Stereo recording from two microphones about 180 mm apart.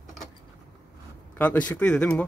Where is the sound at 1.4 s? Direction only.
10° left (ahead or behind).